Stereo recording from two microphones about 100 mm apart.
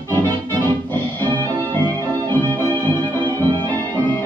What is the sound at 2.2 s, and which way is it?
Organ, 20° left (ahead or behind).